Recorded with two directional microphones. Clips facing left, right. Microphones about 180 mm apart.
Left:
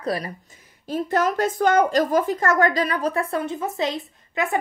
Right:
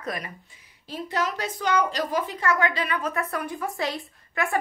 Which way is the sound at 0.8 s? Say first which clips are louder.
Left 7 dB; 50° left (ahead or behind).